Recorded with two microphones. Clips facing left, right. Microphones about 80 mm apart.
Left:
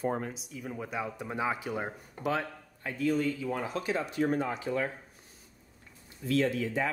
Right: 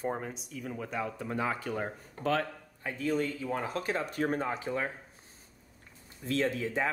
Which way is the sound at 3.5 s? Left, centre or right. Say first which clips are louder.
Even; right.